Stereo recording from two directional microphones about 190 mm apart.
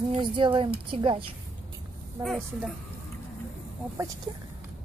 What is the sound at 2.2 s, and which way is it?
Speech, centre (ahead or behind).